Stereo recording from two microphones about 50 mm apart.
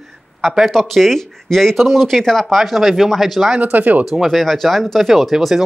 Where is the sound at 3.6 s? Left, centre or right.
Right.